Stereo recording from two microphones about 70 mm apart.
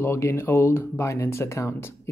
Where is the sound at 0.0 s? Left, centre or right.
Left.